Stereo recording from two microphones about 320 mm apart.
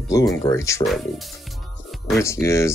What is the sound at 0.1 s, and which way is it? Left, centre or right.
Speech, centre.